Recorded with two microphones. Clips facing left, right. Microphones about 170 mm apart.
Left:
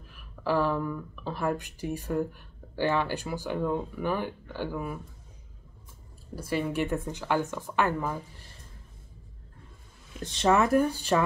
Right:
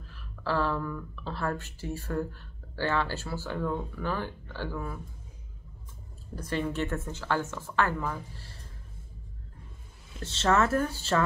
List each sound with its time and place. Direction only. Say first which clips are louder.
0.0 s speech: left 3 dB; 15° left (ahead or behind)
6.3 s speech: left 2 dB; 10° left (ahead or behind)
10.2 s speech: left 2 dB; 15° left (ahead or behind)